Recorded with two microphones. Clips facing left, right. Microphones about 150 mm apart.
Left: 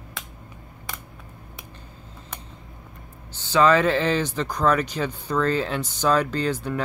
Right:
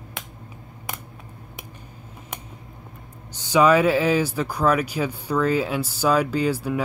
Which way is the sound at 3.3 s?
15° right (ahead or behind).